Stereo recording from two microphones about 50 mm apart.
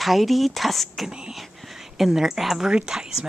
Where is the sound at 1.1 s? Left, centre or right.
Centre.